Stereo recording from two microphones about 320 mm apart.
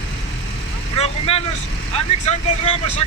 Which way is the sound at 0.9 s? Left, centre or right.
Centre.